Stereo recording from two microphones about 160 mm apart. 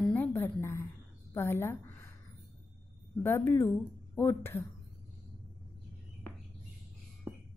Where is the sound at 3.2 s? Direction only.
15° left (ahead or behind).